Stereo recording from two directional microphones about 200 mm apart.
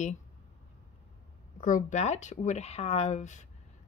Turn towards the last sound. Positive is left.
turn(degrees=35)  # may be behind; listen again after turning